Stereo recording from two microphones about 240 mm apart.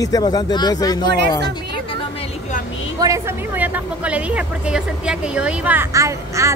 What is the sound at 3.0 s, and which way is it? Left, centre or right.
A woman's voice, centre.